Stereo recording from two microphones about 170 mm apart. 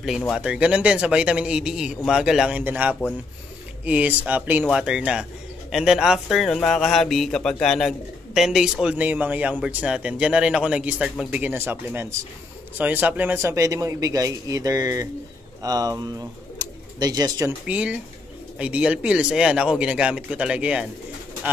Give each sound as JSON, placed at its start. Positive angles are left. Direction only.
{"t": 0.3, "sound": "a man's voice", "side_deg": -5}
{"t": 17.6, "sound": "speech", "side_deg": -5}